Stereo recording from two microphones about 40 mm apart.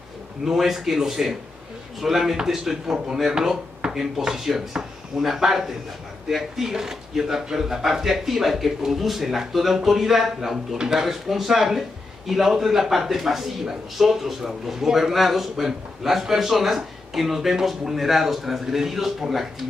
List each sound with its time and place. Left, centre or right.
0.5 s a man's voice: centre
11.1 s a man's voice: centre